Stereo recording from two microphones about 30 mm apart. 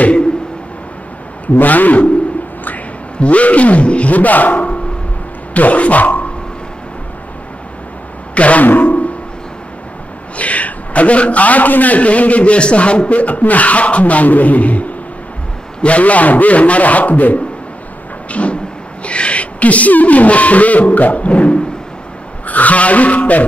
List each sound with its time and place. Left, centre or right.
1.6 s speech: left
3.2 s a sound: left
4.1 s speech: left
5.5 s speech: left
8.4 s speech: left
8.6 s music: left
10.3 s a man's voice: left
13.1 s speech: left
18.3 s a sound: left
22.5 s speech: left